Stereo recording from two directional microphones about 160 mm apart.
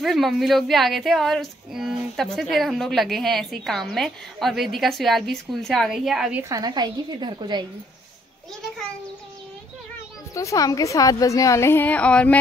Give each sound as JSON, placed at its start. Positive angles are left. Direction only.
{"t": 0.0, "sound": "speech", "side_deg": 0}
{"t": 6.5, "sound": "a woman's voice", "side_deg": -25}
{"t": 10.3, "sound": "a woman's voice", "side_deg": 20}